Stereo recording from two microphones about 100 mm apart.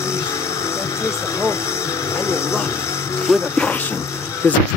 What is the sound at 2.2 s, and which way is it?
Speech, 25° left (ahead or behind).